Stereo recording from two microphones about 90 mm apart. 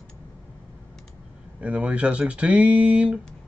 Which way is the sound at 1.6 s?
15° right (ahead or behind).